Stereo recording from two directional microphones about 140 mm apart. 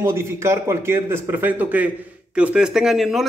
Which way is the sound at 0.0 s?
20° right (ahead or behind).